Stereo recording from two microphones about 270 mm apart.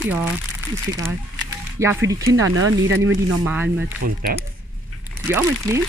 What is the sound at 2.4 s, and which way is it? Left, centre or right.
Speech, right.